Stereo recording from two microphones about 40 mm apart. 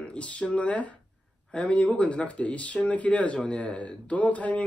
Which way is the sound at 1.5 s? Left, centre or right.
Left.